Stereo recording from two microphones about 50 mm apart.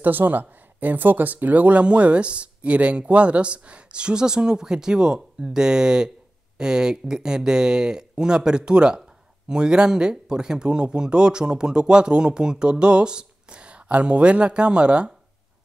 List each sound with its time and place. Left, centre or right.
0.0 s speech: right